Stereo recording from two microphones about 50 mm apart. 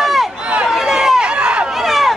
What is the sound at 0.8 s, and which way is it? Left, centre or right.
Run, centre.